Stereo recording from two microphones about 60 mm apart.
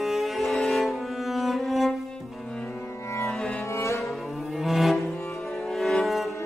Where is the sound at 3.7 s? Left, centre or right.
Left.